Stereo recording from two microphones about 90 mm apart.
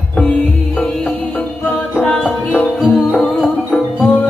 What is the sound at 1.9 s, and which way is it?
Music, 15° left (ahead or behind).